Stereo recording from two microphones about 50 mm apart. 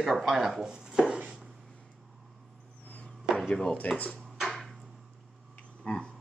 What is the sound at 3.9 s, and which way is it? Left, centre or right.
Speech, left.